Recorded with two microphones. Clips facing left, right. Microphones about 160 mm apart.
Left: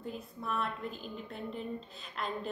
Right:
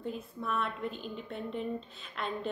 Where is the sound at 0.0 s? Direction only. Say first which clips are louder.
Right 3 dB; centre (ahead or behind).